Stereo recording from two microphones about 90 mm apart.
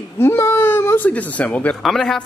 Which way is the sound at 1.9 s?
5° left (ahead or behind).